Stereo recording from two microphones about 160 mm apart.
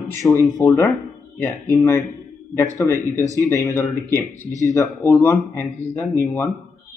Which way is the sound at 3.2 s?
20° right (ahead or behind).